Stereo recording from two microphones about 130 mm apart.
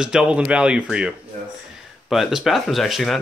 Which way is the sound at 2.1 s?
Centre (ahead or behind).